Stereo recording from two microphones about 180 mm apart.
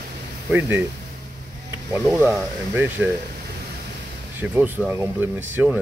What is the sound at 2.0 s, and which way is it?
Speech, 5° right (ahead or behind).